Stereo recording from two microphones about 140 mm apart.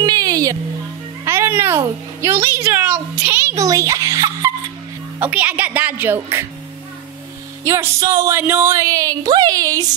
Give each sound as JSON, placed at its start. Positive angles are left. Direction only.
{"t": 0.0, "sound": "music", "side_deg": -25}
{"t": 1.2, "sound": "a child's voice", "side_deg": -20}
{"t": 5.2, "sound": "a woman's voice", "side_deg": -10}
{"t": 7.6, "sound": "a child's voice", "side_deg": -20}